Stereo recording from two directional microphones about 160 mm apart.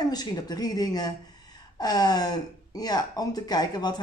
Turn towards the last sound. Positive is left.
turn(degrees=25)  # may be behind; listen again after turning